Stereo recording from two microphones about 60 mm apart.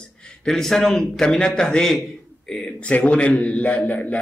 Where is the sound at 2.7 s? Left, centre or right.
Left.